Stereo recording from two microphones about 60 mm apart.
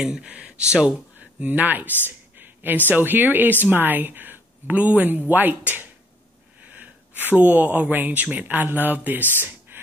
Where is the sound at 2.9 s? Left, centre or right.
Right.